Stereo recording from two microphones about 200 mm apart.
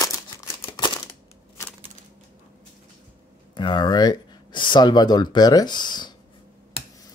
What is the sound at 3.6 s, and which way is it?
Speech, 20° left (ahead or behind).